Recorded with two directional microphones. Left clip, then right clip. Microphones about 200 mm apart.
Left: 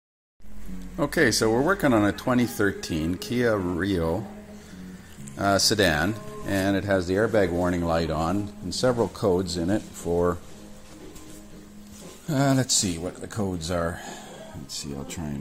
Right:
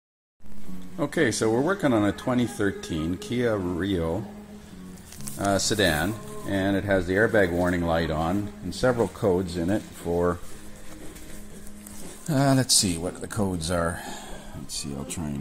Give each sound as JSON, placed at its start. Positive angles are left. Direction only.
{"t": 0.9, "sound": "speech", "side_deg": 5}
{"t": 5.4, "sound": "speech", "side_deg": 5}
{"t": 12.3, "sound": "speech", "side_deg": -5}